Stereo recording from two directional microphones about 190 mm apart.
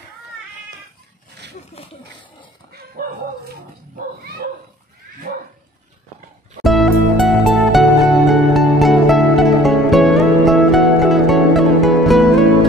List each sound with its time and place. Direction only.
1.8 s a sound: 30° left (ahead or behind)
2.7 s bow-wow: 50° right (ahead or behind)
6.6 s music: centre (ahead or behind)